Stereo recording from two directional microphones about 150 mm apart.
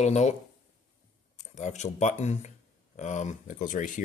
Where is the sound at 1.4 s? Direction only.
55° left (ahead or behind).